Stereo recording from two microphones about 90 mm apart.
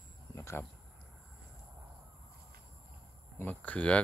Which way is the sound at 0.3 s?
30° left (ahead or behind).